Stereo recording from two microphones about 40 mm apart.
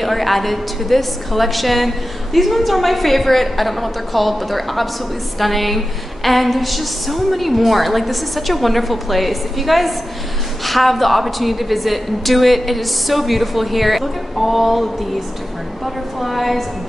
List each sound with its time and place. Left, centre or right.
0.0 s a woman's voice: centre